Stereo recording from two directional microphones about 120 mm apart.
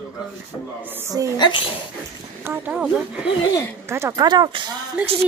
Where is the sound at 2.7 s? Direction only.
10° right (ahead or behind).